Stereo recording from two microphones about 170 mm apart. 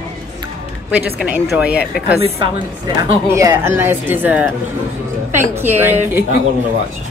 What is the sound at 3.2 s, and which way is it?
A woman's voice, 20° right (ahead or behind).